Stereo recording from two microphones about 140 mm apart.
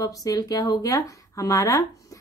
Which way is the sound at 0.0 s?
25° left (ahead or behind).